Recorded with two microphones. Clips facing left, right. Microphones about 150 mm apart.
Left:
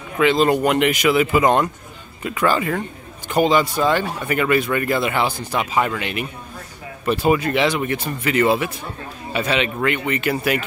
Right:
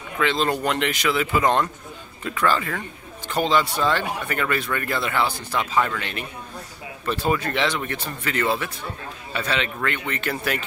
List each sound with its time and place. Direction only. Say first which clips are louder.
0.2 s speech: left 6 dB; 10° left (ahead or behind)